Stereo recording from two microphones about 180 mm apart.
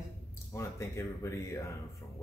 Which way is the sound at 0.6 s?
15° left (ahead or behind).